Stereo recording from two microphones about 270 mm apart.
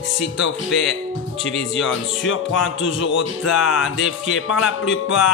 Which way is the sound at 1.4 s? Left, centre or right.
Left.